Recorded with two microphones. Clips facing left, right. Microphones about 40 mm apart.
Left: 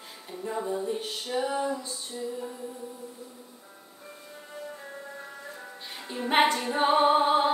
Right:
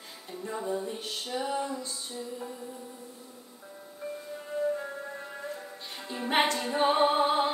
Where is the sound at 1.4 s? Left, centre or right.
Centre.